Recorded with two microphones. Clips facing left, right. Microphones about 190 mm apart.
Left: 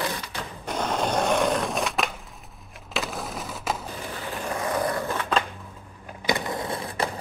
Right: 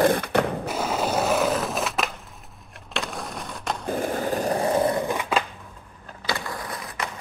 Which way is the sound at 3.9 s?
50° right (ahead or behind).